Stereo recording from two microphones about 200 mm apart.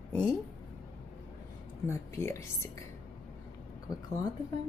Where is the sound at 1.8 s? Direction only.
15° left (ahead or behind).